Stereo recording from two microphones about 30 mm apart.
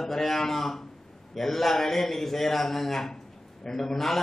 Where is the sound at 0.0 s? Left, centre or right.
Centre.